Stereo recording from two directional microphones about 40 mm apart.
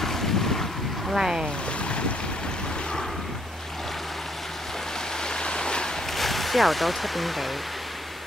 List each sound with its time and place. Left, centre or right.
0.0 s boat: centre
1.1 s speech: centre
5.2 s stream: left
6.1 s speech: centre